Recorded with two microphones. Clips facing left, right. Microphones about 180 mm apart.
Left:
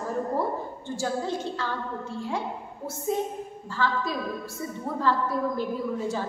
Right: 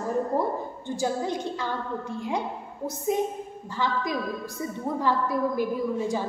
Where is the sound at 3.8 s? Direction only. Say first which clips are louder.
Even; 15° right (ahead or behind).